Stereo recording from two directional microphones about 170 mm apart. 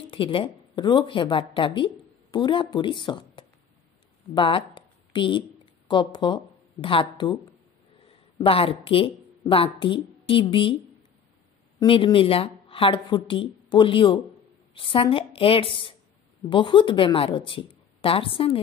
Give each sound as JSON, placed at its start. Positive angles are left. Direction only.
{"t": 0.1, "sound": "a woman's voice", "side_deg": 30}
{"t": 8.4, "sound": "a woman's voice", "side_deg": 35}
{"t": 11.8, "sound": "a woman's voice", "side_deg": 30}